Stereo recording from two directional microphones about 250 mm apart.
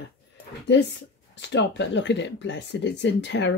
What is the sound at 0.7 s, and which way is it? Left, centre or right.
Speech, left.